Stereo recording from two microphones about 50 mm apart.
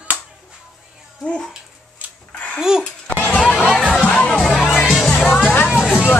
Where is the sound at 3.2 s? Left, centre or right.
Left.